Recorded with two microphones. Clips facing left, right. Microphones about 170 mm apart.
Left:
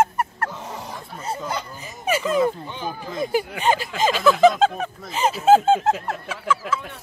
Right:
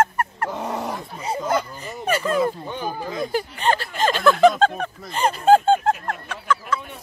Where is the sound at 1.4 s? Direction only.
55° right (ahead or behind).